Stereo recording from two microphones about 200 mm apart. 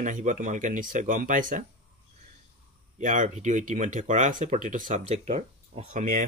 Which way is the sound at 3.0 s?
40° right (ahead or behind).